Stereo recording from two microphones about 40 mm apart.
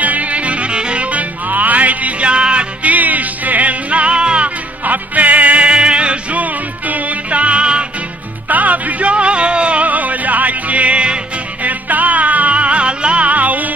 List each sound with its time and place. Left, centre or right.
0.0 s music: right
1.1 s music: right
2.3 s music: right
2.9 s music: right
4.8 s music: right
8.5 s music: right
9.1 s music: right
11.6 s music: right